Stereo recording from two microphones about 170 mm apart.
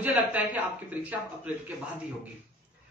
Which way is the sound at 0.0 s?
10° right (ahead or behind).